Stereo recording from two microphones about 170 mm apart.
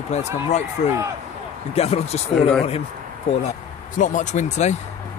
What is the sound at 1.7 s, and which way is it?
Speech, 35° left (ahead or behind).